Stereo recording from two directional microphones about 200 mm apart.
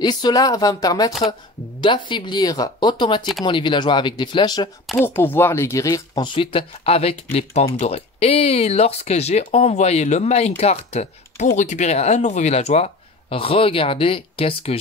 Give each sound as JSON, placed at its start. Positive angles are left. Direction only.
{"t": 0.0, "sound": "speech", "side_deg": 20}
{"t": 4.9, "sound": "speech", "side_deg": 10}